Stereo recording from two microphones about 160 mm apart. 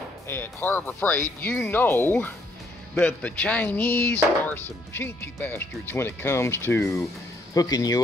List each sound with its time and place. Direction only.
0.3 s speech: 15° left (ahead or behind)